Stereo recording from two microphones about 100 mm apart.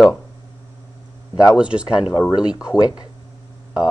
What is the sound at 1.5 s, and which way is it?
Speech, 10° right (ahead or behind).